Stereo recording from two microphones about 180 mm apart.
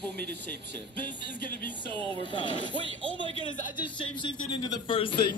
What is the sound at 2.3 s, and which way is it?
Speech, 25° left (ahead or behind).